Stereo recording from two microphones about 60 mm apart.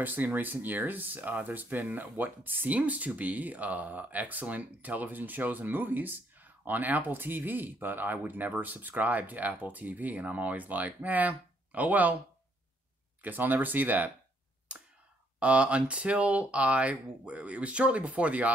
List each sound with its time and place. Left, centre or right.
0.0 s speech: right
13.2 s speech: right
15.3 s speech: centre